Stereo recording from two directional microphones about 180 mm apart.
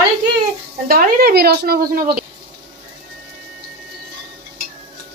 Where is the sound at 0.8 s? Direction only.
55° right (ahead or behind).